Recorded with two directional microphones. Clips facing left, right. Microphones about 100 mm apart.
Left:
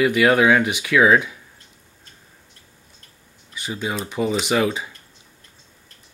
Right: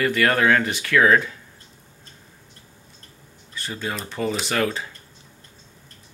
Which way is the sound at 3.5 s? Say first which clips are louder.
Left 3 dB; 15° left (ahead or behind).